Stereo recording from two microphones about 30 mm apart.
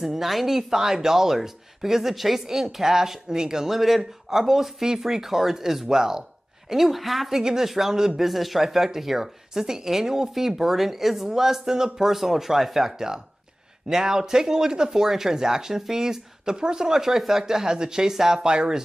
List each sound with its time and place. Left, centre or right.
0.0 s speech: centre
2.1 s a woman's voice: centre
2.4 s speech: centre
3.6 s speech: centre
6.7 s a woman's voice: centre
9.5 s speech: right
17.6 s speech: right
18.4 s speech: right